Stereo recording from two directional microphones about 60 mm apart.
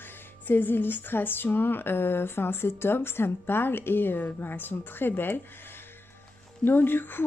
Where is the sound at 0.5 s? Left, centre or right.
Left.